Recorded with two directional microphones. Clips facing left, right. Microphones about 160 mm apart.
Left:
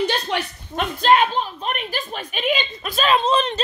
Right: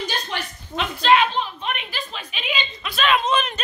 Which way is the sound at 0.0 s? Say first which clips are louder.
Left 6 dB; 70° left (ahead or behind).